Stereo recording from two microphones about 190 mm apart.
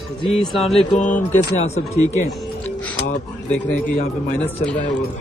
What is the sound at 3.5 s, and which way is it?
Speech, 5° left (ahead or behind).